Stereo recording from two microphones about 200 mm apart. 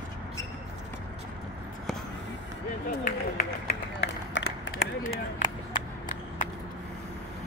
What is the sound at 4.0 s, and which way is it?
Run, 65° left (ahead or behind).